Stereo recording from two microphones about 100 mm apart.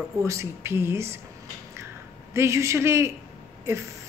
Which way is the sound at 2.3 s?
30° right (ahead or behind).